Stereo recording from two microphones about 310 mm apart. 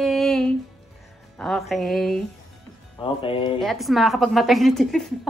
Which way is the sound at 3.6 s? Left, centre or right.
Centre.